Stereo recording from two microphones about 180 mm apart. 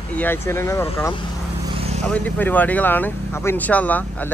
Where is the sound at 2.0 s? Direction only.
10° left (ahead or behind).